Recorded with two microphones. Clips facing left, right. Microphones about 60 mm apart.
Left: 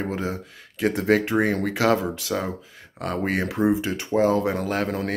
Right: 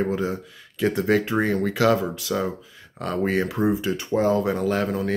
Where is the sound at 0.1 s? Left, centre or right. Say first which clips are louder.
Right 3 dB; left.